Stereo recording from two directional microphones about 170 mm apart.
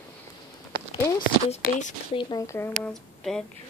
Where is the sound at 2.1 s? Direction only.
25° left (ahead or behind).